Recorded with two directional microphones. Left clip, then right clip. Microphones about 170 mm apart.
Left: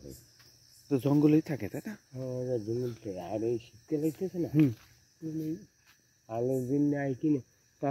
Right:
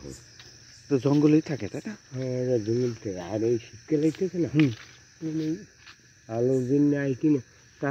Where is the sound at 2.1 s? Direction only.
40° right (ahead or behind).